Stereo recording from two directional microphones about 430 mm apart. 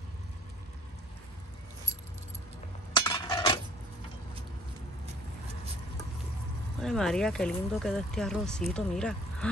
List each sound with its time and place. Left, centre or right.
2.9 s chink: centre
6.8 s speech: centre